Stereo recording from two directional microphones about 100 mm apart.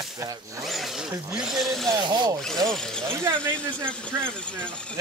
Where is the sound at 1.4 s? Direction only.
Centre (ahead or behind).